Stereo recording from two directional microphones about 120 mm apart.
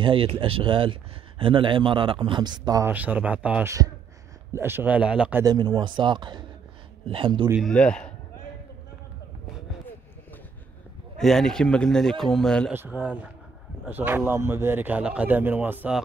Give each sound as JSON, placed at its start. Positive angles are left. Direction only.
{"t": 0.0, "sound": "a man's voice", "side_deg": -50}
{"t": 2.8, "sound": "a man's voice", "side_deg": -15}
{"t": 5.4, "sound": "a man's voice", "side_deg": -35}
{"t": 7.6, "sound": "a man's voice", "side_deg": 5}
{"t": 11.1, "sound": "a man's voice", "side_deg": 5}
{"t": 12.7, "sound": "a man's voice", "side_deg": -15}